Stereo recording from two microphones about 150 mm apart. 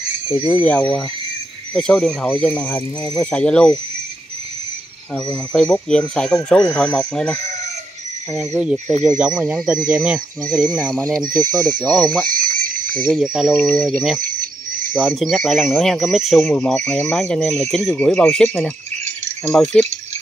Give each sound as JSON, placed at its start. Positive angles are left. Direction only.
{"t": 0.5, "sound": "speech", "side_deg": 10}
{"t": 5.3, "sound": "speech", "side_deg": 5}
{"t": 12.3, "sound": "a sound", "side_deg": -65}
{"t": 13.1, "sound": "speech", "side_deg": -5}
{"t": 14.2, "sound": "cricket", "side_deg": -70}
{"t": 15.0, "sound": "speech", "side_deg": 0}